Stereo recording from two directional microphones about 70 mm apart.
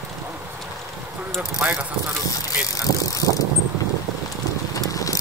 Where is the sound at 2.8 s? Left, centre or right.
Left.